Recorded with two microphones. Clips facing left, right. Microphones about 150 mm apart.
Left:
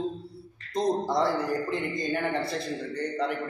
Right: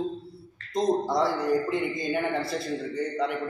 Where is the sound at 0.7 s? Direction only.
Centre (ahead or behind).